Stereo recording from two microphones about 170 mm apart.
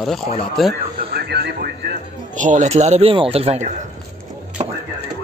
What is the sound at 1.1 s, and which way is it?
Speech, 75° right (ahead or behind).